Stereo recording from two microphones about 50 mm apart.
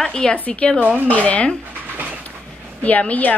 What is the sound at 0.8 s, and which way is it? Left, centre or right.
Speech, right.